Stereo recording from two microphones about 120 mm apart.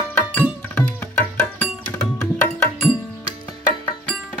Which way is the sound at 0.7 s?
15° left (ahead or behind).